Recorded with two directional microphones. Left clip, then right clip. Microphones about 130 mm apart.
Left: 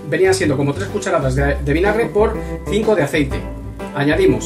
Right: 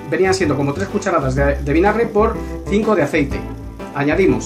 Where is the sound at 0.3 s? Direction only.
40° right (ahead or behind).